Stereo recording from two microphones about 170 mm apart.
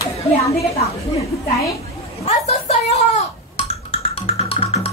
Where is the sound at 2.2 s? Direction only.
40° left (ahead or behind).